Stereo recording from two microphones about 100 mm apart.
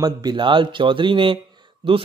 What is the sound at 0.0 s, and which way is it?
Speech, 45° right (ahead or behind).